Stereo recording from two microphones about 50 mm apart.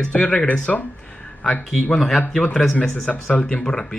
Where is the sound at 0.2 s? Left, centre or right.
Left.